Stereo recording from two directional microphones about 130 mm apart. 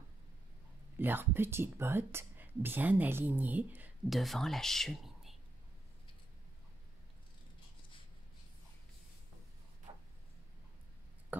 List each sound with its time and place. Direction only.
0.9 s speech: 15° right (ahead or behind)
4.1 s speech: centre (ahead or behind)